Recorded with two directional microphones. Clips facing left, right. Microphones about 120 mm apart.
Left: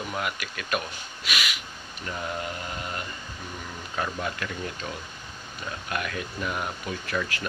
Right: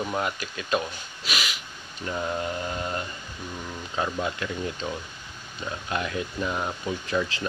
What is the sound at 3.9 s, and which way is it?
Speech, 20° right (ahead or behind).